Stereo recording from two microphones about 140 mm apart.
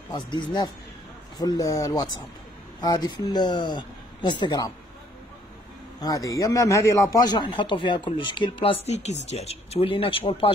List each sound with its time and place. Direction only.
0.1 s a man's voice: 35° left (ahead or behind)
5.9 s a man's voice: 25° left (ahead or behind)